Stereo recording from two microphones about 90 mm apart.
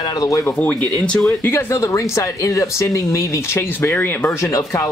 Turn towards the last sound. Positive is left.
turn(degrees=25)  # may be behind; listen again after turning